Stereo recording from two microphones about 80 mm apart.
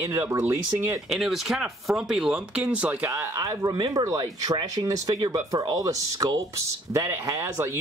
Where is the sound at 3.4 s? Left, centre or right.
Right.